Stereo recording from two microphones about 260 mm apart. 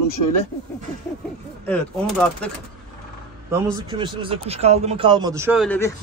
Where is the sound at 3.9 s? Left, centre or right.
Centre.